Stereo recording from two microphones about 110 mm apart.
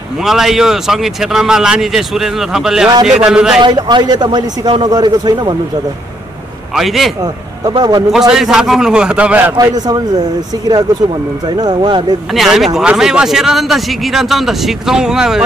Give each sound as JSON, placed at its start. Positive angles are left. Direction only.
{"t": 0.2, "sound": "speech", "side_deg": -5}
{"t": 3.6, "sound": "speech", "side_deg": -45}
{"t": 6.7, "sound": "speech", "side_deg": 0}
{"t": 7.6, "sound": "speech", "side_deg": -40}
{"t": 8.1, "sound": "speech", "side_deg": -5}
{"t": 9.6, "sound": "speech", "side_deg": -35}
{"t": 11.4, "sound": "speech", "side_deg": -40}
{"t": 12.3, "sound": "speech", "side_deg": 0}